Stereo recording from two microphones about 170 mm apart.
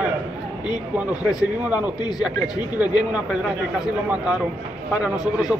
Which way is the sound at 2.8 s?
5° right (ahead or behind).